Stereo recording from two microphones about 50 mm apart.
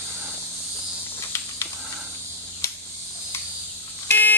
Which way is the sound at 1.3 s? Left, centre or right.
Left.